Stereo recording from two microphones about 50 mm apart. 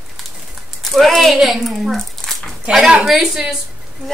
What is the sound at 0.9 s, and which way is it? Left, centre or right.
Speech, centre.